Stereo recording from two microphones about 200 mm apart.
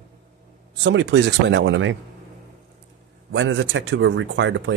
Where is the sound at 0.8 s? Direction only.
60° right (ahead or behind).